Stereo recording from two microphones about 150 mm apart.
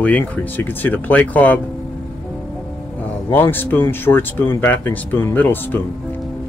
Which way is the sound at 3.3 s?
15° left (ahead or behind).